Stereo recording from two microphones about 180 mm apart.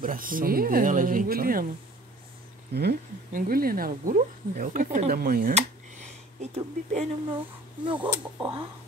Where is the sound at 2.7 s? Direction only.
65° right (ahead or behind).